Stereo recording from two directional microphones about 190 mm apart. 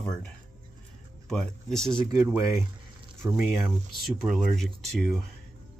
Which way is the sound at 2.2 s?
15° right (ahead or behind).